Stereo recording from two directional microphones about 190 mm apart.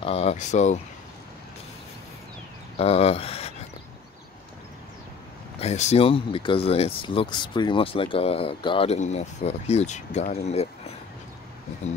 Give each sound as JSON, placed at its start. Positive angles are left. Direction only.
{"t": 0.0, "sound": "speech", "side_deg": 30}
{"t": 2.8, "sound": "speech", "side_deg": 30}
{"t": 5.6, "sound": "speech", "side_deg": 35}